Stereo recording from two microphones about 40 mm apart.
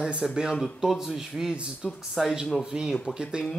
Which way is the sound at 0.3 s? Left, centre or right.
Centre.